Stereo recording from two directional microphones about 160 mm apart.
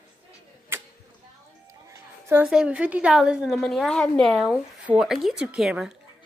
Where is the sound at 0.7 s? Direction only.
15° right (ahead or behind).